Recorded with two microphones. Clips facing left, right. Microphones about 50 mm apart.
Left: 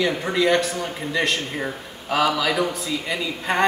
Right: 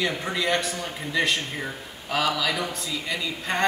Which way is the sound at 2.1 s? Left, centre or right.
Centre.